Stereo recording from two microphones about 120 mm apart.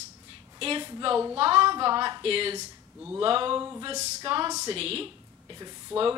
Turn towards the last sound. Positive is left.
turn(degrees=-5)  # may be behind; listen again after turning